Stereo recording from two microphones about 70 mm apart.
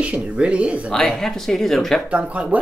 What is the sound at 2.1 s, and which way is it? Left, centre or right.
Speech, centre.